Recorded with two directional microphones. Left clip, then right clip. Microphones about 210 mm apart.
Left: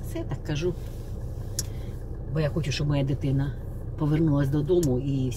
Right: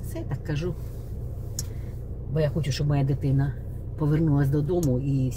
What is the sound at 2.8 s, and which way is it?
Speech, 10° right (ahead or behind).